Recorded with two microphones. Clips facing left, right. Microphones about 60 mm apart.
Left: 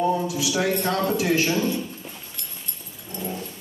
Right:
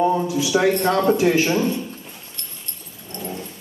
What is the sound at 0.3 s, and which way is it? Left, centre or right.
A man's voice, right.